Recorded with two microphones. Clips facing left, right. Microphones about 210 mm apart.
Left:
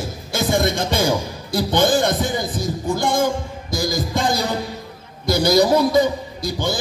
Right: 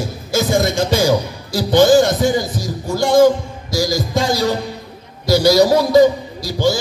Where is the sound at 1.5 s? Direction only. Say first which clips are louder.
Right 7 dB; 55° left (ahead or behind).